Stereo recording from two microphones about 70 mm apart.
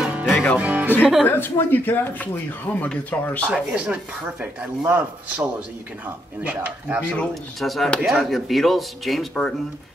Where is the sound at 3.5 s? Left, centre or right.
Centre.